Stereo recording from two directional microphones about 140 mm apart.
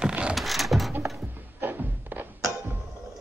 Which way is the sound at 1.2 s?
15° right (ahead or behind).